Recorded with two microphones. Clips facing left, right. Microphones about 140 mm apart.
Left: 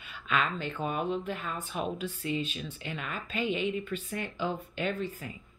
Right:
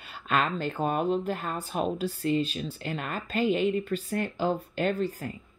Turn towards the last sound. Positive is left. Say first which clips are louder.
# right 5 dB
turn(degrees=-45)  # may be behind; listen again after turning